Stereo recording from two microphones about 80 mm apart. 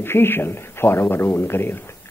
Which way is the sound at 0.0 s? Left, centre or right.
Left.